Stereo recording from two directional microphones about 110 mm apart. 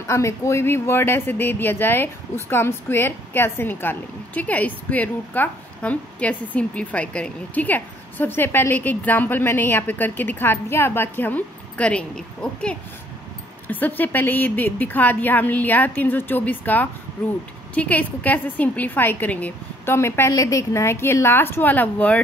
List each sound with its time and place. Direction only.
0.0 s a woman's voice: 25° left (ahead or behind)